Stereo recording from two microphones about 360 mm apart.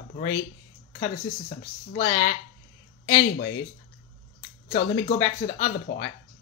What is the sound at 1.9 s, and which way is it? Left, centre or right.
Speech, left.